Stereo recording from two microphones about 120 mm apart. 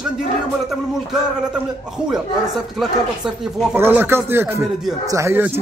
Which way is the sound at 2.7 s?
5° right (ahead or behind).